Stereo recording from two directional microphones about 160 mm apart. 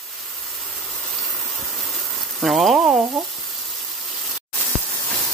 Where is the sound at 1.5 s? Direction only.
Centre (ahead or behind).